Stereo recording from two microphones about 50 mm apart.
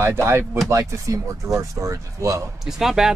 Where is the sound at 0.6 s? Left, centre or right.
Right.